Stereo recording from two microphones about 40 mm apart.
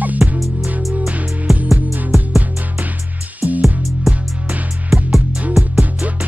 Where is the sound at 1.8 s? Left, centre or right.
Right.